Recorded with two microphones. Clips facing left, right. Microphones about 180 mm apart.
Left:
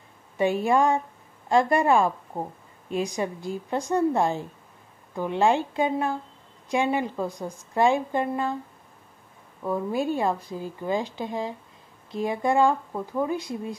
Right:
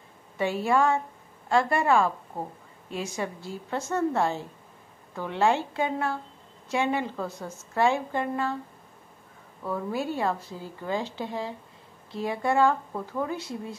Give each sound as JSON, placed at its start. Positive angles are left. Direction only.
{"t": 0.4, "sound": "a woman's voice", "side_deg": 15}
{"t": 9.6, "sound": "a woman's voice", "side_deg": 15}